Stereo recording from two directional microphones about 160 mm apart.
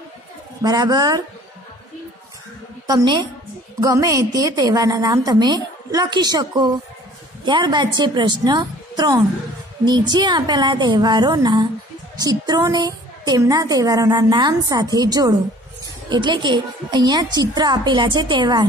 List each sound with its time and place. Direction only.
0.6 s a woman's voice: 25° right (ahead or behind)
2.9 s a woman's voice: 25° right (ahead or behind)